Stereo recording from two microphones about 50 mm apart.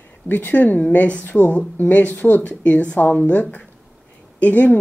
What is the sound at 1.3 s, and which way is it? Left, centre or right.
Speech, centre.